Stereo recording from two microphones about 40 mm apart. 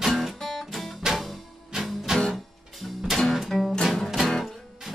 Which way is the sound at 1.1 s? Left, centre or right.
Centre.